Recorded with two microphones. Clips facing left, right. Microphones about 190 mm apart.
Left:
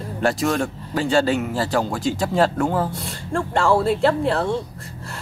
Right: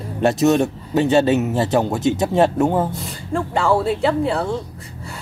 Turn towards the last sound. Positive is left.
turn(degrees=0)  # may be behind; listen again after turning